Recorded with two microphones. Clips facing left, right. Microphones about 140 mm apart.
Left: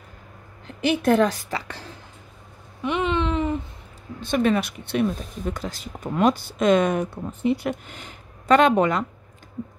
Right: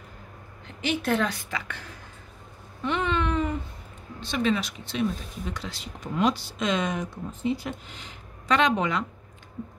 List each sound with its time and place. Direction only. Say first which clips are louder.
0.8 s a woman's voice: left 7 dB; 45° left (ahead or behind)
2.8 s a sound: left 3 dB; 20° left (ahead or behind)
4.2 s speech: left 5 dB; 50° left (ahead or behind)